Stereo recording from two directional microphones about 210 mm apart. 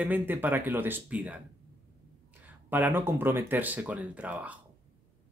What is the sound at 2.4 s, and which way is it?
Speech, 10° right (ahead or behind).